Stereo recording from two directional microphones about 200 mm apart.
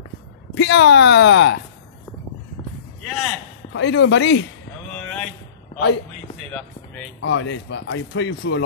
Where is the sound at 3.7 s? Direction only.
65° left (ahead or behind).